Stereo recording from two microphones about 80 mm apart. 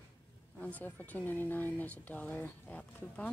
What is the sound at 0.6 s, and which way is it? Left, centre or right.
Speech, centre.